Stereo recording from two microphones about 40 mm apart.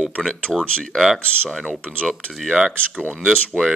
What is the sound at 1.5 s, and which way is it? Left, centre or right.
Speech, centre.